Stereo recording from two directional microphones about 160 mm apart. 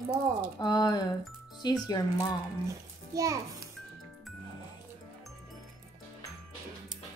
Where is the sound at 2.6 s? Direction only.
20° right (ahead or behind).